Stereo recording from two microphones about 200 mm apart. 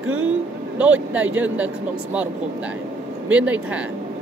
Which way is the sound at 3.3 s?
5° right (ahead or behind).